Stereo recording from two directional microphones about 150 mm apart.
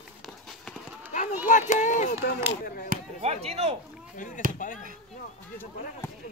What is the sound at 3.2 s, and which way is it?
Speech, 45° right (ahead or behind).